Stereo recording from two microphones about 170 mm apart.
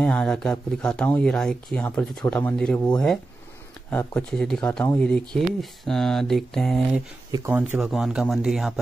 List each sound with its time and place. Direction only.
0.0 s speech: 5° left (ahead or behind)
3.9 s speech: 10° left (ahead or behind)
7.2 s speech: 20° right (ahead or behind)
7.5 s speech: 5° right (ahead or behind)